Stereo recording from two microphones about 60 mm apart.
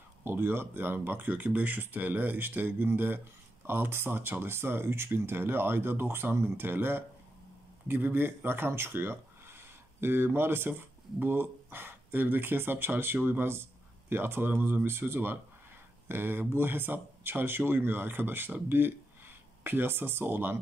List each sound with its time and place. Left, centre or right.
0.2 s speech: right